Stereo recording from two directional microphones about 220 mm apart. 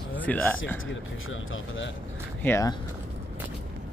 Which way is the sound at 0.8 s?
65° left (ahead or behind).